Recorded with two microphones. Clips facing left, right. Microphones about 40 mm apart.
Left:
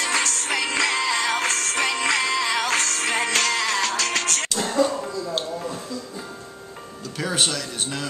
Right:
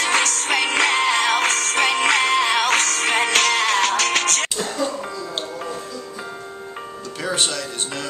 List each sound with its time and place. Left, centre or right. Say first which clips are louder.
0.0 s music: right 4 dB; right
7.2 s speech: right 1 dB; centre